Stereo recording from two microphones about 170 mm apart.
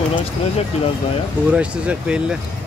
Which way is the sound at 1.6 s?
5° right (ahead or behind).